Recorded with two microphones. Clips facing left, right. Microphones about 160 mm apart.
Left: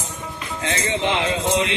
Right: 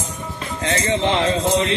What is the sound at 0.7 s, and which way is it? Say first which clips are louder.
Music: right 3 dB; 35° right (ahead or behind).